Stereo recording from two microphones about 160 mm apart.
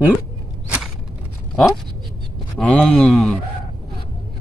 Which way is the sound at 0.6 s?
5° right (ahead or behind).